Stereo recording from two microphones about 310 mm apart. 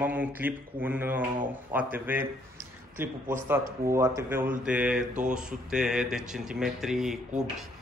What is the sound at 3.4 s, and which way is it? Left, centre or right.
A man's voice, centre.